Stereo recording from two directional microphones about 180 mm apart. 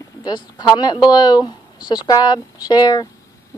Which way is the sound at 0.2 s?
25° left (ahead or behind).